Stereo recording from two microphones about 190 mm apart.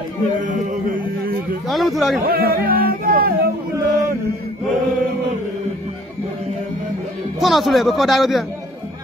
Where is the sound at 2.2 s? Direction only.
50° right (ahead or behind).